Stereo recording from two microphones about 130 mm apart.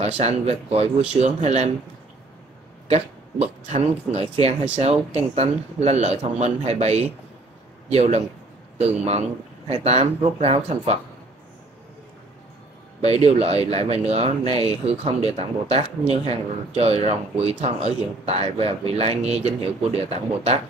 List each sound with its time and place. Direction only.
0.0 s a man's voice: 55° right (ahead or behind)
2.9 s a man's voice: 55° right (ahead or behind)
13.0 s speech: 50° right (ahead or behind)